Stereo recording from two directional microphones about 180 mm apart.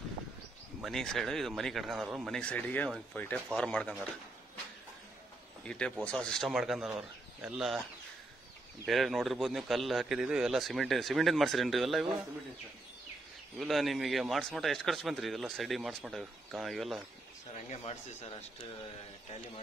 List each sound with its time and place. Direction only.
0.8 s a man's voice: centre (ahead or behind)
5.6 s a man's voice: 5° left (ahead or behind)
8.8 s a man's voice: centre (ahead or behind)
13.6 s a man's voice: centre (ahead or behind)
17.6 s speech: 30° left (ahead or behind)